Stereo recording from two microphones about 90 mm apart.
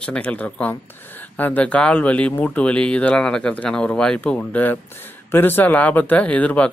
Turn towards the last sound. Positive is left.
turn(degrees=15)  # may be behind; listen again after turning